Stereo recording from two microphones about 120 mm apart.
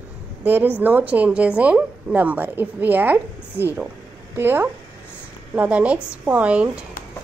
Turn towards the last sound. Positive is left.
turn(degrees=-10)  # may be behind; listen again after turning